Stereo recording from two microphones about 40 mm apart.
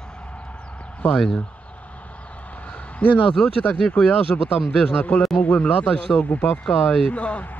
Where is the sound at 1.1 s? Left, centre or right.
Centre.